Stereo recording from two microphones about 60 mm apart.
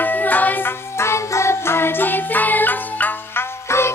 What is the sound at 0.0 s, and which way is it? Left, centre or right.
Music, left.